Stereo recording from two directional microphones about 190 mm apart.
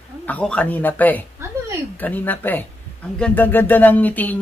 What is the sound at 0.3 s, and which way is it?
Speech, 5° left (ahead or behind).